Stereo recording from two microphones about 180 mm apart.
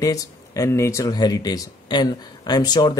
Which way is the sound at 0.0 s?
20° left (ahead or behind).